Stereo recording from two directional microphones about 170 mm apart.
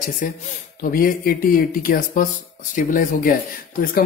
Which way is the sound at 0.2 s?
55° left (ahead or behind).